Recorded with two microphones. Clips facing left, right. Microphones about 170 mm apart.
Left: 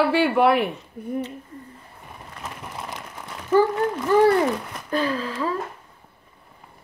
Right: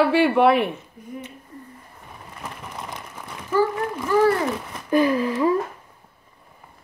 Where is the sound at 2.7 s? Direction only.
Centre (ahead or behind).